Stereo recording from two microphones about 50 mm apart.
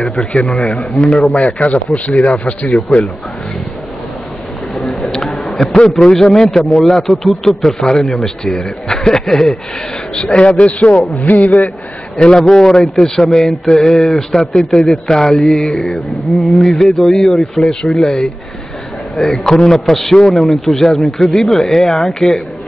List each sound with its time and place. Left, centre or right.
0.1 s speech: left
0.5 s a man's voice: centre
1.1 s speech: left
5.0 s a sound: centre
5.7 s a man's voice: centre
10.1 s a man's voice: left
12.2 s a man's voice: centre
14.5 s a man's voice: centre